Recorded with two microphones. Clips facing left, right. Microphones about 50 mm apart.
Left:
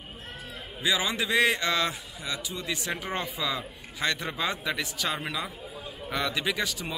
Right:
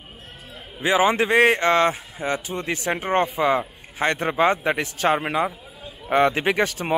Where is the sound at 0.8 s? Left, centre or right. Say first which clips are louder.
Right 9 dB; right.